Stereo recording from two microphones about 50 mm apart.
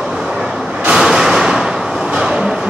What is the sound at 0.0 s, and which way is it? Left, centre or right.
Vehicle, centre.